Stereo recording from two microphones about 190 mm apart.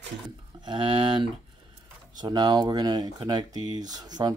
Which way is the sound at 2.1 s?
20° right (ahead or behind).